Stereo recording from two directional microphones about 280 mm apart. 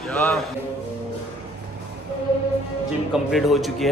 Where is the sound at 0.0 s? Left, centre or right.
Centre.